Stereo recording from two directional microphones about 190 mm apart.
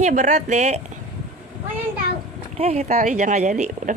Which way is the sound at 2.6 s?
35° right (ahead or behind).